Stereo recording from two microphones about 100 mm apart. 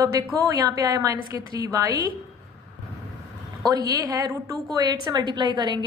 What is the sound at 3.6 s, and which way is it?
A woman's voice, 40° right (ahead or behind).